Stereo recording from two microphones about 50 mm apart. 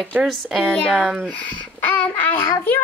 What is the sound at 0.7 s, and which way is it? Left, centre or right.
Speech, centre.